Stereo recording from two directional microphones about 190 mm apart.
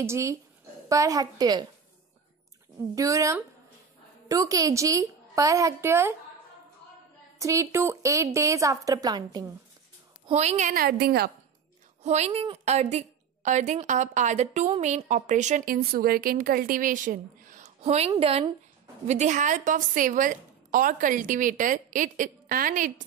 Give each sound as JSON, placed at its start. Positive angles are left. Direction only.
{"t": 0.0, "sound": "a woman's voice", "side_deg": -15}
{"t": 2.9, "sound": "a woman's voice", "side_deg": -15}
{"t": 7.3, "sound": "a woman's voice", "side_deg": -15}
{"t": 10.2, "sound": "a woman's voice", "side_deg": -35}
{"t": 12.0, "sound": "a woman's voice", "side_deg": -35}
{"t": 19.0, "sound": "a woman's voice", "side_deg": -40}